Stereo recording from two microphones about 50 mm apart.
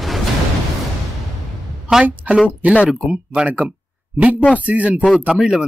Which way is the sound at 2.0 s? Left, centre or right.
Right.